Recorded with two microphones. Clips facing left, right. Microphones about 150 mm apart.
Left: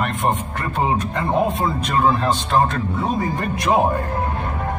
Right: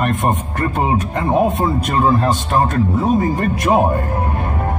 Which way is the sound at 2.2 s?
45° right (ahead or behind).